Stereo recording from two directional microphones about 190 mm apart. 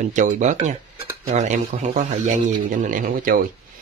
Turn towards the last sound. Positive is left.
turn(degrees=-45)  # may be behind; listen again after turning